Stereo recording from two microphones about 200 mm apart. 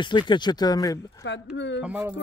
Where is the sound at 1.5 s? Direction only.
60° left (ahead or behind).